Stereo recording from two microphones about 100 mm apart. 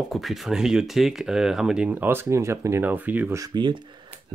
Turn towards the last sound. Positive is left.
turn(degrees=-55)  # may be behind; listen again after turning